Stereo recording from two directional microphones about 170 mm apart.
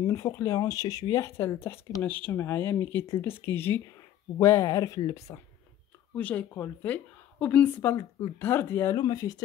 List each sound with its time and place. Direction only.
0.0 s speech: 20° left (ahead or behind)
6.1 s speech: 10° left (ahead or behind)